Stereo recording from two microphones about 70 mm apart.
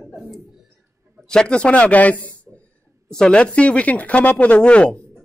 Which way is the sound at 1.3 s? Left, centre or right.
Centre.